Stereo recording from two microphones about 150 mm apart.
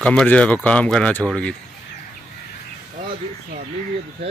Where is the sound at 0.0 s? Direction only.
5° left (ahead or behind).